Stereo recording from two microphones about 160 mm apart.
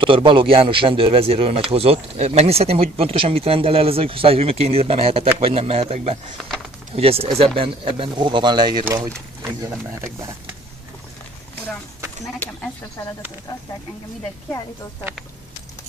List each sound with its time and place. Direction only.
0.0 s a man's voice: 30° right (ahead or behind)